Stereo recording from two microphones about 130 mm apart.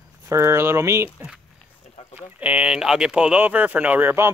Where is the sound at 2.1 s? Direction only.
10° right (ahead or behind).